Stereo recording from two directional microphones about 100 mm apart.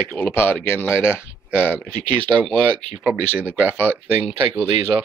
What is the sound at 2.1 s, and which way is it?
Speech, 55° right (ahead or behind).